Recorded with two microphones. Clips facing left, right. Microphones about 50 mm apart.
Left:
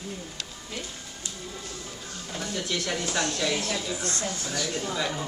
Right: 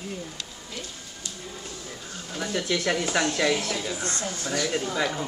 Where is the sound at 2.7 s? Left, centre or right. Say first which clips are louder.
Right 5 dB; right.